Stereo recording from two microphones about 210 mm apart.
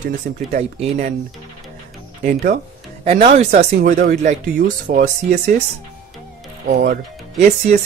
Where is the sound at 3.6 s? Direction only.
45° right (ahead or behind).